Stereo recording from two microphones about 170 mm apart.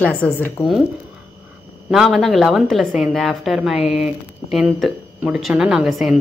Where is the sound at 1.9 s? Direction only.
Centre (ahead or behind).